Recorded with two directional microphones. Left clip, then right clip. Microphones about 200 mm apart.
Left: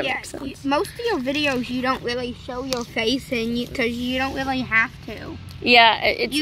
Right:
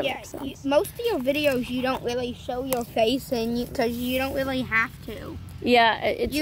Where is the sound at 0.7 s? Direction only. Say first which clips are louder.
Left 1 dB; 20° left (ahead or behind).